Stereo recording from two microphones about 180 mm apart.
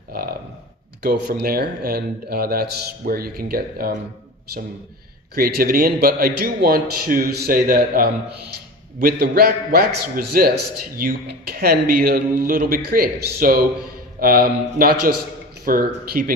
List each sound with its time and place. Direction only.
0.1 s a sound: 55° right (ahead or behind)
1.0 s a man's voice: 65° right (ahead or behind)
5.3 s a man's voice: 55° right (ahead or behind)